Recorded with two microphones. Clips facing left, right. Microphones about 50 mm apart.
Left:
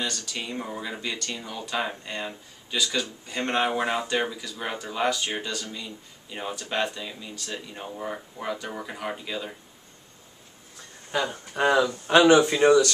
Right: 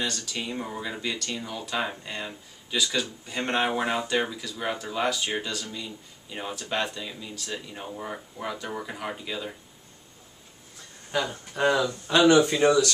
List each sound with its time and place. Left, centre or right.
0.0 s speech: centre
11.1 s speech: centre; by 12.7 s left